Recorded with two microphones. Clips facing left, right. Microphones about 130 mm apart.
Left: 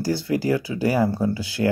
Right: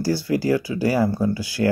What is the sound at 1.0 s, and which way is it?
Speech, 30° left (ahead or behind).